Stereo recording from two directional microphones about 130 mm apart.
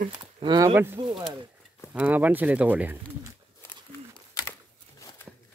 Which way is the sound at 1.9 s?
10° right (ahead or behind).